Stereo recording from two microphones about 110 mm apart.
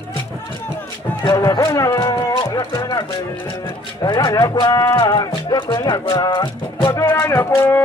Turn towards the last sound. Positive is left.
turn(degrees=20)  # may be behind; listen again after turning